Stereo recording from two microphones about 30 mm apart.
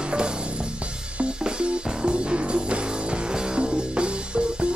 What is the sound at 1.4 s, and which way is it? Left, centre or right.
Music, right.